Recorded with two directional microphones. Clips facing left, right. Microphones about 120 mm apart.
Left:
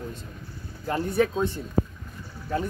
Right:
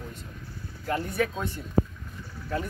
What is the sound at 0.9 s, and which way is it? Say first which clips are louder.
Speech: left 4 dB; 30° left (ahead or behind).